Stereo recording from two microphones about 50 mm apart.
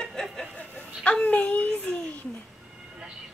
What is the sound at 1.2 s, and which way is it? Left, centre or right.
Speech, left.